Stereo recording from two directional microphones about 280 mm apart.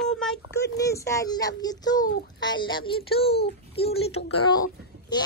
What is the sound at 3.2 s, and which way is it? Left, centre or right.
Speech, left.